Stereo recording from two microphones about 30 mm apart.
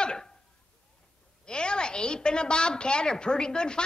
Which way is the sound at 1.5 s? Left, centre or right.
Left.